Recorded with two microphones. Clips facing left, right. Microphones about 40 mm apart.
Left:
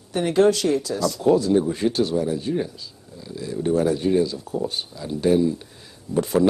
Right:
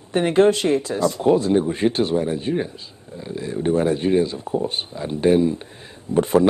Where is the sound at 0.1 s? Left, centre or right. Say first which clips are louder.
Right 2 dB; right.